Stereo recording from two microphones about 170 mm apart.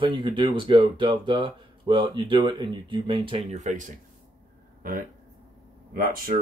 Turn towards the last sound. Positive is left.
turn(degrees=-55)  # may be behind; listen again after turning